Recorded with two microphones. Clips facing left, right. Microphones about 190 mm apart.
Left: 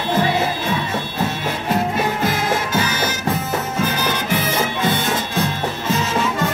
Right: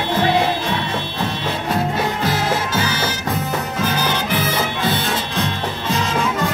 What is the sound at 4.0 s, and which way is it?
Music, 10° left (ahead or behind).